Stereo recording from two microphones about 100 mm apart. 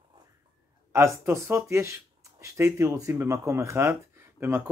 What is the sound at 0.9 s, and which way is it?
Speech, 30° right (ahead or behind).